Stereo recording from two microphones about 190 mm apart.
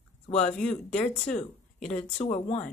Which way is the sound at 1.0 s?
35° left (ahead or behind).